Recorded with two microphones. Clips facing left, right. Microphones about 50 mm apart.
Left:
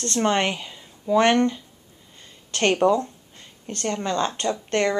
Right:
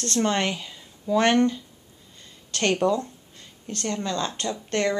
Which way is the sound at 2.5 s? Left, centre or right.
Centre.